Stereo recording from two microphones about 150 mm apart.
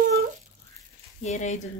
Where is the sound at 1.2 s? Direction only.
50° left (ahead or behind).